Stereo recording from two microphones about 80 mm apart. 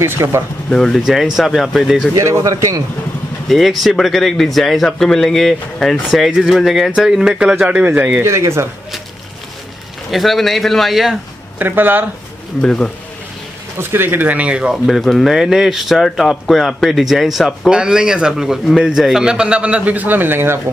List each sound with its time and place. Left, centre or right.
0.0 s speech: right
0.7 s speech: centre
2.1 s speech: right
2.5 s speech: right
3.4 s speech: centre; by 8.2 s right
8.2 s speech: right
10.1 s speech: centre
11.5 s speech: right
12.6 s speech: centre
13.7 s speech: right; by 14.8 s centre
14.9 s speech: centre; by 20.6 s right